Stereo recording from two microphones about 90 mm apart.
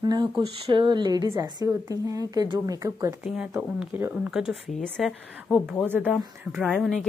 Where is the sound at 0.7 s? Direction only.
60° right (ahead or behind).